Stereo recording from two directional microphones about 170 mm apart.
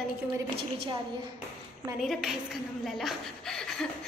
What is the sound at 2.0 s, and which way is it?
A woman's voice, centre (ahead or behind).